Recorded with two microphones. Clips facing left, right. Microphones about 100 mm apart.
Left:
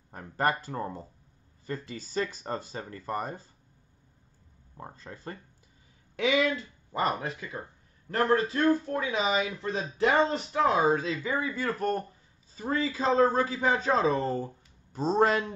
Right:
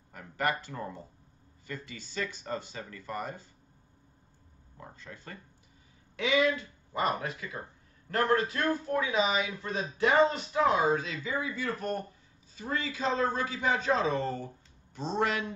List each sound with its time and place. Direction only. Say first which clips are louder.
0.1 s a man's voice: left 3 dB; 35° left (ahead or behind)
4.7 s a man's voice: left 4 dB; 35° left (ahead or behind)
6.9 s a man's voice: left 1 dB; 30° left (ahead or behind)